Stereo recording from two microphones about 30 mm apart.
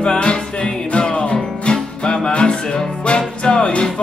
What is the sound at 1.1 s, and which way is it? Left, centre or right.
Music, left.